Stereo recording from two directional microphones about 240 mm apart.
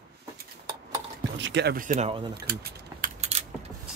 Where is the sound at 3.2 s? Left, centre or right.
Right.